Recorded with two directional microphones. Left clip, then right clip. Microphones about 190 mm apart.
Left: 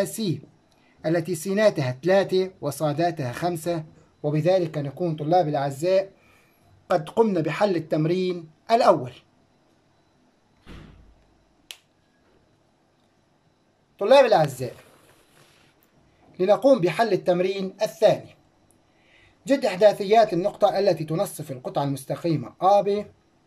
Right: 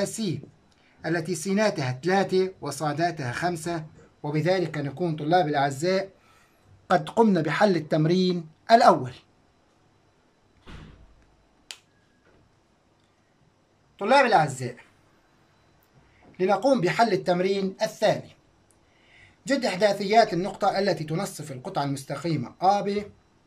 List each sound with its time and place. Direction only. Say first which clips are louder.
0.0 s speech: left 2 dB; 20° left (ahead or behind)
13.9 s speech: left 3 dB; 15° left (ahead or behind)
16.3 s speech: left 4 dB; 15° left (ahead or behind)